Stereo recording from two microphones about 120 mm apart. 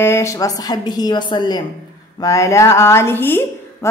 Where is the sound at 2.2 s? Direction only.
25° left (ahead or behind).